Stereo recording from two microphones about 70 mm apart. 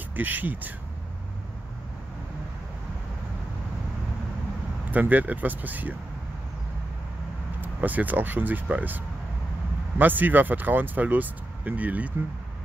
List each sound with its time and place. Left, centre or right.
0.1 s speech: right
4.9 s speech: right
7.6 s speech: right